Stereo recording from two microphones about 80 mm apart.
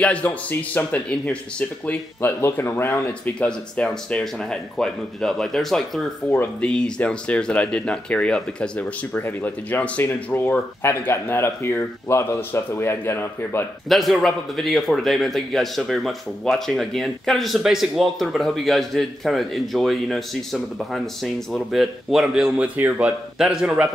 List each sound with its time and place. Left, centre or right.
0.0 s speech: centre
2.2 s speech: left
3.3 s speech: centre
9.1 s speech: left
13.8 s a man's voice: centre